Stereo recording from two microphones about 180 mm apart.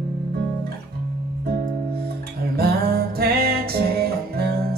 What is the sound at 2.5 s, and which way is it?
Music, 60° right (ahead or behind).